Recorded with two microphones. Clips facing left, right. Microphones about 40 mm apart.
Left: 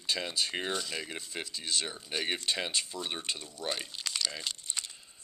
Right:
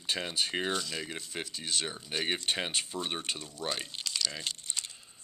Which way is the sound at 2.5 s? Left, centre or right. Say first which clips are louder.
Even; right.